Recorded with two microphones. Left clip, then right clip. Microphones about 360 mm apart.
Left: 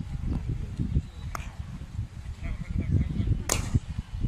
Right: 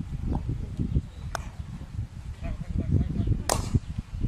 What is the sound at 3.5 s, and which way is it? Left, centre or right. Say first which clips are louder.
Arrow: right 3 dB; right.